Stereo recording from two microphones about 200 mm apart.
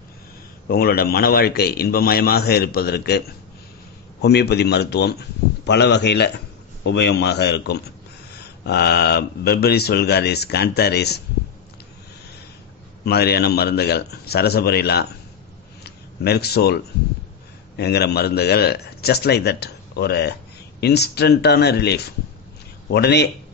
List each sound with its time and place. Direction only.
0.7 s speech: 50° left (ahead or behind)
13.0 s speech: 55° left (ahead or behind)